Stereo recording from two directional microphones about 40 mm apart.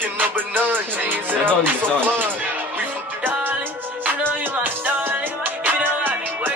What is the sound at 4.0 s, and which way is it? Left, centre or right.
Music, right.